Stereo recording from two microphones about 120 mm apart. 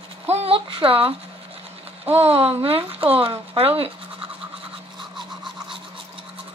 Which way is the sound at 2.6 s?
50° right (ahead or behind).